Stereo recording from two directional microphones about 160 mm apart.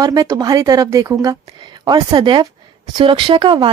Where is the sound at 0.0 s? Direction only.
25° right (ahead or behind).